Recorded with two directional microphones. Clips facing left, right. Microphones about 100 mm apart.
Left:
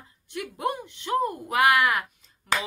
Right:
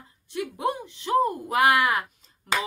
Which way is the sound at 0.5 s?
20° right (ahead or behind).